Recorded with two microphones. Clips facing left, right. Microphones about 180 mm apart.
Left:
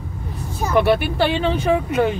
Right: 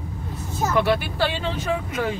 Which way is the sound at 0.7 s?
60° left (ahead or behind).